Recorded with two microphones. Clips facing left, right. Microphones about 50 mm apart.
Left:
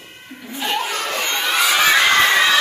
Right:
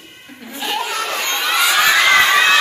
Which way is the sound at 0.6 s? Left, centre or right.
Centre.